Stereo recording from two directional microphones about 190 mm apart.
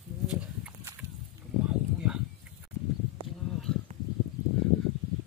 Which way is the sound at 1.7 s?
5° right (ahead or behind).